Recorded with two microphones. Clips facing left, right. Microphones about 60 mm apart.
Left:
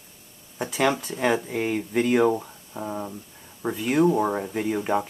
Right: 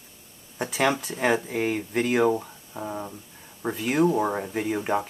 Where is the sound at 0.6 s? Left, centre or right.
Centre.